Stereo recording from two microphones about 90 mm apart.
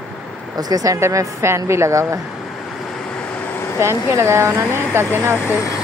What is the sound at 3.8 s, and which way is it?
Speech, 30° right (ahead or behind).